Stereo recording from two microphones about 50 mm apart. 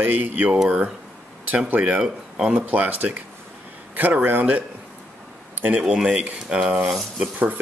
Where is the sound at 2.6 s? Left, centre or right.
Right.